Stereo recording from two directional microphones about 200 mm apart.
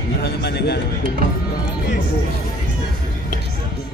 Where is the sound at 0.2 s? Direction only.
55° left (ahead or behind).